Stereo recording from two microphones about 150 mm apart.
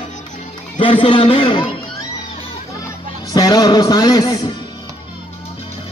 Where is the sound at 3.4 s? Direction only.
25° left (ahead or behind).